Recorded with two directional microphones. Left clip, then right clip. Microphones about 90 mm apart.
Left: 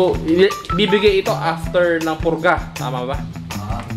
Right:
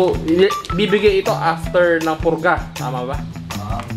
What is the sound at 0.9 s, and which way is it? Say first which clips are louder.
Speech: even; centre (ahead or behind).